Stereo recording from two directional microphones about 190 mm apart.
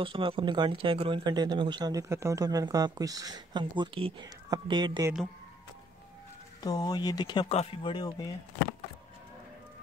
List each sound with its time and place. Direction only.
0.0 s speech: 25° right (ahead or behind)
6.6 s speech: 20° left (ahead or behind)